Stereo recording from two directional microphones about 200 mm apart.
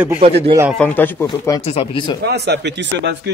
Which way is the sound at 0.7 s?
10° left (ahead or behind).